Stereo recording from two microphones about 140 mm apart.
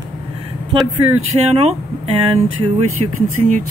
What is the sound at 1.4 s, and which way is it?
Speech, 50° right (ahead or behind).